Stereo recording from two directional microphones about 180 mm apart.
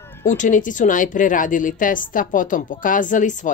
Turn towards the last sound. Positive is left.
turn(degrees=45)  # may be behind; listen again after turning